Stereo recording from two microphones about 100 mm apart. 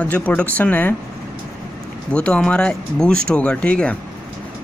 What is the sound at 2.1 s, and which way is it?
Speech, 10° left (ahead or behind).